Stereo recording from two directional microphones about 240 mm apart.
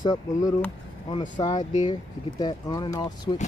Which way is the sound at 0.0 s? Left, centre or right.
Centre.